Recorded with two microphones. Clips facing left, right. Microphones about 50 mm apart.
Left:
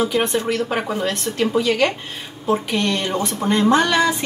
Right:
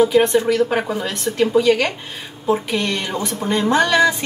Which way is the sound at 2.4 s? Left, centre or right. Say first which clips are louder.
Even; centre.